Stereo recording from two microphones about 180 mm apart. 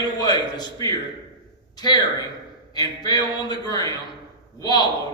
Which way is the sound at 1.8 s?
25° left (ahead or behind).